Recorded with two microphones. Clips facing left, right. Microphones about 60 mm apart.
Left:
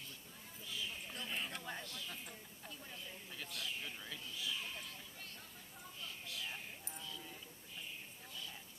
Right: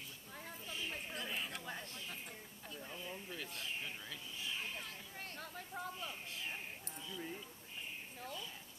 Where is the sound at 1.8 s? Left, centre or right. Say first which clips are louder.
Even; right.